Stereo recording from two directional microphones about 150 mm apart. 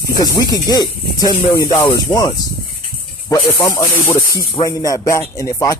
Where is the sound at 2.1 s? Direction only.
25° left (ahead or behind).